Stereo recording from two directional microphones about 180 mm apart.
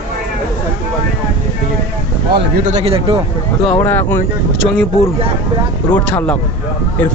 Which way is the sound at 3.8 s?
10° left (ahead or behind).